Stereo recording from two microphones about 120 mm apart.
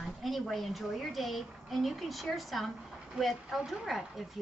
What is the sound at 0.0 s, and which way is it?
Speech, centre (ahead or behind).